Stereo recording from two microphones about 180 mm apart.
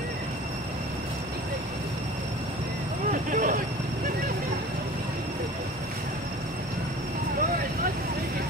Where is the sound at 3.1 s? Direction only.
50° right (ahead or behind).